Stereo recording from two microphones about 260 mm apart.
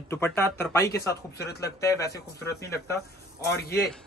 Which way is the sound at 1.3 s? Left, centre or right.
Left.